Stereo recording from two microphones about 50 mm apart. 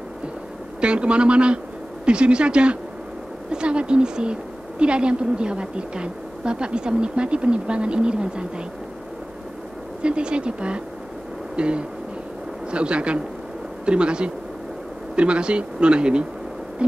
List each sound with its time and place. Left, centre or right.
0.7 s a woman's voice: right
10.0 s a woman's voice: right
11.5 s music: right
12.7 s a woman's voice: right